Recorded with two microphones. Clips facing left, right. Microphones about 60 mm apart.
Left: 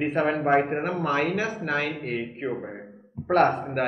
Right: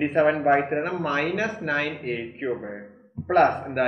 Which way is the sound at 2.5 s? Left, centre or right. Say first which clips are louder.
Right 1 dB; right.